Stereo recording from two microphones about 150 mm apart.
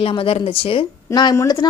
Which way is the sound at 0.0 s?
40° left (ahead or behind).